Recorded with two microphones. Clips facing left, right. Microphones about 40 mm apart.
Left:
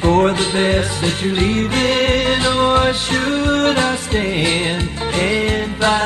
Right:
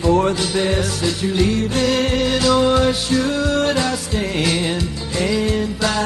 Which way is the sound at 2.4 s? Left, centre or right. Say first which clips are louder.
Right 2 dB; left.